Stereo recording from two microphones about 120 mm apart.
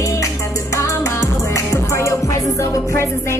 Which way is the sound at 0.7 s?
25° left (ahead or behind).